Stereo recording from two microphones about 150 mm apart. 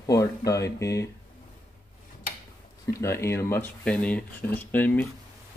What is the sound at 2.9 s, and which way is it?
Speech, 20° left (ahead or behind).